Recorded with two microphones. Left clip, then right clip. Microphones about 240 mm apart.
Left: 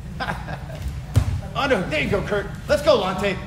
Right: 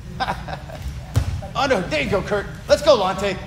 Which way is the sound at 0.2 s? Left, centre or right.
Centre.